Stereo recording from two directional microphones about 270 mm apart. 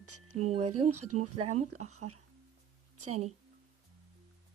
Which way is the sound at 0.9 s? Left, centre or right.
Right.